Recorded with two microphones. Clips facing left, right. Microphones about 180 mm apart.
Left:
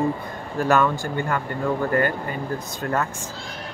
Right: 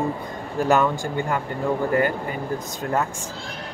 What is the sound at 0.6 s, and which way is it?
Speech, 15° right (ahead or behind).